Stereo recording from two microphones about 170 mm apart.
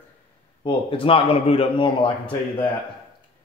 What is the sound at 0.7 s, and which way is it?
Speech, 30° left (ahead or behind).